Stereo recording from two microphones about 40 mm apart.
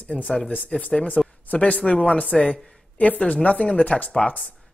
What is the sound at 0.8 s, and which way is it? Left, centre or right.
Speech, left.